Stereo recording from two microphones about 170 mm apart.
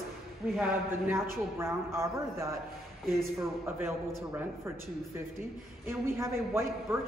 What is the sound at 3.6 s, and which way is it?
Speech, 15° right (ahead or behind).